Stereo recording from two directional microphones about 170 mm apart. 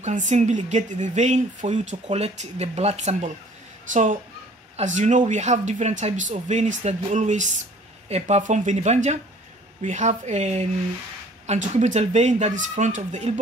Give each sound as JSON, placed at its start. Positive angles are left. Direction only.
{"t": 0.0, "sound": "speech", "side_deg": -45}